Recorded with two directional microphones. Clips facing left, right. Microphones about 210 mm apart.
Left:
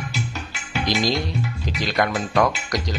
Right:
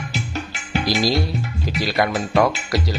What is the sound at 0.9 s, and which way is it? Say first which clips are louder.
Speech: right 2 dB; 5° right (ahead or behind).